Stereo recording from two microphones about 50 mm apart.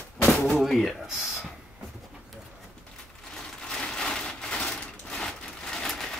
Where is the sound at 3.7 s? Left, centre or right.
Centre.